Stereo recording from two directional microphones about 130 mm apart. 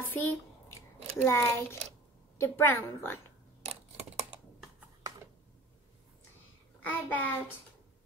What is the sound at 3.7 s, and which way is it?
Computer keyboard, 55° right (ahead or behind).